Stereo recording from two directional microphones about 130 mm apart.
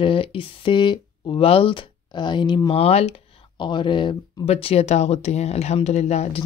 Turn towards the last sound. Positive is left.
turn(degrees=50)  # may be behind; listen again after turning